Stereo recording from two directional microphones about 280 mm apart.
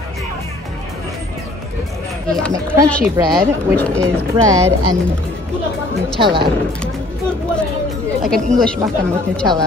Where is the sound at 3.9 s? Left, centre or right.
Centre.